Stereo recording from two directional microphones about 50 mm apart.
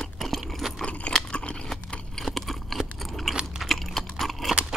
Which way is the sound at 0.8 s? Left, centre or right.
Left.